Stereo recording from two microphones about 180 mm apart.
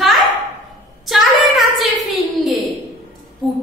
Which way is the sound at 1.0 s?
Centre (ahead or behind).